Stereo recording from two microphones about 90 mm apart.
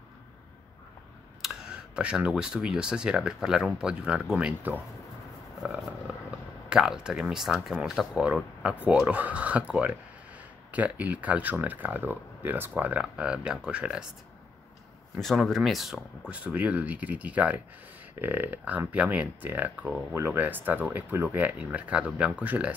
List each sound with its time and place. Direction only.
1.4 s speech: 5° right (ahead or behind)
6.7 s speech: 5° right (ahead or behind)
15.1 s speech: 5° left (ahead or behind)
16.3 s speech: 15° right (ahead or behind)